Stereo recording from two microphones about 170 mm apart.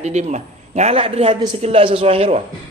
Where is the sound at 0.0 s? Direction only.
40° right (ahead or behind).